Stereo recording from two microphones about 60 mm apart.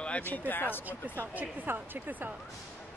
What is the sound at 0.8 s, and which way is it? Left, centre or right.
Speech, right.